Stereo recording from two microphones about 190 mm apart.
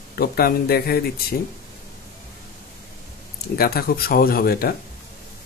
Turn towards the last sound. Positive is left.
turn(degrees=55)  # may be behind; listen again after turning